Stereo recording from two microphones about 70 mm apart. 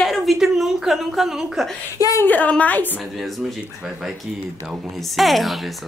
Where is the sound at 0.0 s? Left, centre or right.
Centre.